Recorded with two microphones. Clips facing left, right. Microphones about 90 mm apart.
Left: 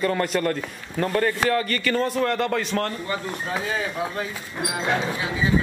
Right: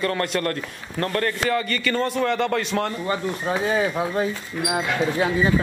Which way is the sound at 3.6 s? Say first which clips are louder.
Right 7 dB; 30° right (ahead or behind).